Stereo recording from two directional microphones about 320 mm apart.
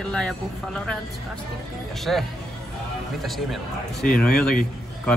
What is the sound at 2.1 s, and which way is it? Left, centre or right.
Speech, centre.